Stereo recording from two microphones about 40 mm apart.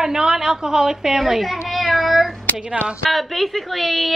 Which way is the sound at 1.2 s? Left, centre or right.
Centre.